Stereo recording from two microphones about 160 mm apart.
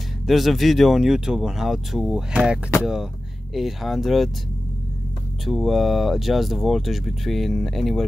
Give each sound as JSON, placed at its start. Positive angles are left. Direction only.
{"t": 0.3, "sound": "speech", "side_deg": 0}
{"t": 5.4, "sound": "speech", "side_deg": 0}